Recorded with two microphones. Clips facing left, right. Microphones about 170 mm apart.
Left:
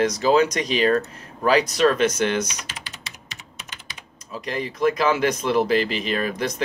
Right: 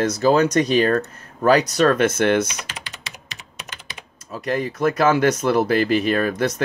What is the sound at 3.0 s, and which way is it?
Typing, 85° right.